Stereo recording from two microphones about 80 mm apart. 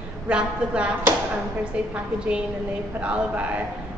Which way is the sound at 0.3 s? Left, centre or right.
Centre.